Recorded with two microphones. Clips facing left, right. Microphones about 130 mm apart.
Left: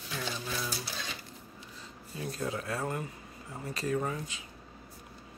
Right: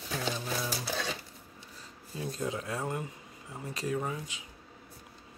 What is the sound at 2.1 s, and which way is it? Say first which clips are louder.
Speech: right 1 dB; 25° right (ahead or behind).